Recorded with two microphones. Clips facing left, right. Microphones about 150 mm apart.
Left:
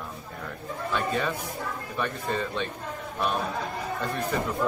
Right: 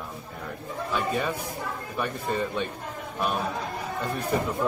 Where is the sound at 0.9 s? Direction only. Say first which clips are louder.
Even; 10° right (ahead or behind).